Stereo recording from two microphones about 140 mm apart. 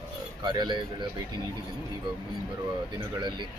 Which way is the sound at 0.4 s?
30° right (ahead or behind).